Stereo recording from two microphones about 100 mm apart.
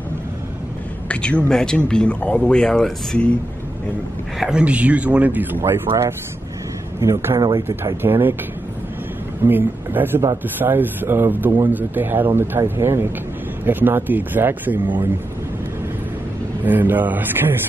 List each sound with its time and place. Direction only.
1.0 s a man's voice: 10° left (ahead or behind)
4.4 s speech: 10° right (ahead or behind)
7.0 s speech: 25° right (ahead or behind)
7.3 s speech: 45° right (ahead or behind)
7.6 s speech: 20° right (ahead or behind)
9.4 s speech: 20° right (ahead or behind)
16.6 s speech: 20° right (ahead or behind)